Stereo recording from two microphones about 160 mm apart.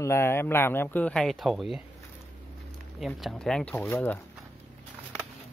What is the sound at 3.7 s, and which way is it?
Speech, 15° left (ahead or behind).